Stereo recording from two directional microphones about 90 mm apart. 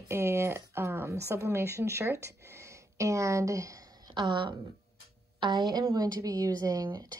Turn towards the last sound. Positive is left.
turn(degrees=-40)  # may be behind; listen again after turning